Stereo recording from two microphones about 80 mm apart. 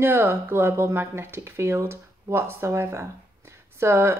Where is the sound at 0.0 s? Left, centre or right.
Right.